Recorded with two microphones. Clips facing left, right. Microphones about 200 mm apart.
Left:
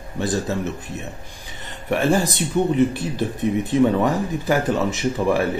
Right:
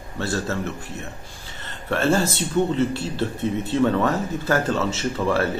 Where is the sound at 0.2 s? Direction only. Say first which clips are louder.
Left 3 dB; 15° left (ahead or behind).